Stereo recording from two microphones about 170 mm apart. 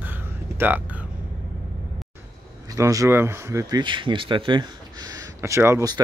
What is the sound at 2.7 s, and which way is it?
Speech, 20° right (ahead or behind).